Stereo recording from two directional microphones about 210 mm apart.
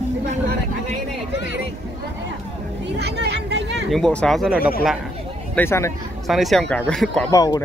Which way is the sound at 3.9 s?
5° left (ahead or behind).